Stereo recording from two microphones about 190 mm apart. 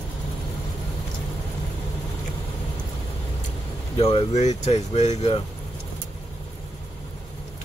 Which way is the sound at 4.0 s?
30° left (ahead or behind).